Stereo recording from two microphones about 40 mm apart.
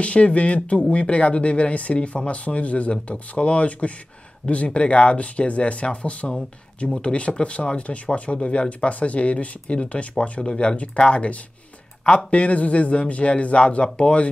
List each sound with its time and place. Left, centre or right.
0.0 s speech: left
10.4 s speech: centre